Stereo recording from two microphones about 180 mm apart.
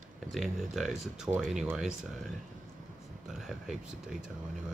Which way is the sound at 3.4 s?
Centre (ahead or behind).